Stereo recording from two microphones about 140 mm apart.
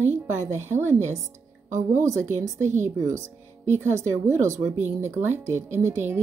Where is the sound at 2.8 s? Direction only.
20° right (ahead or behind).